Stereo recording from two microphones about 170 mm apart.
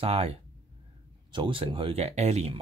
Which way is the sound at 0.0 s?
35° right (ahead or behind).